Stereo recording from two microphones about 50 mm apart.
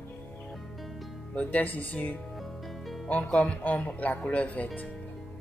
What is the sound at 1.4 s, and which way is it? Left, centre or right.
Speech, left.